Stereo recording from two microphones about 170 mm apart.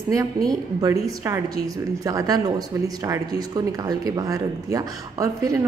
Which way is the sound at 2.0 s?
20° right (ahead or behind).